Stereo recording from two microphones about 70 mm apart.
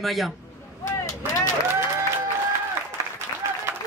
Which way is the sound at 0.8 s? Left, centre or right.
Left.